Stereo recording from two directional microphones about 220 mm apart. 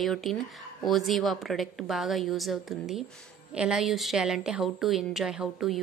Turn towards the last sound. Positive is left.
turn(degrees=0)  # may be behind; listen again after turning